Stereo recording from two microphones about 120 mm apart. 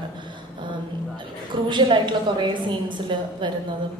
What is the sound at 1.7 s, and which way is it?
A woman's voice, 40° right (ahead or behind).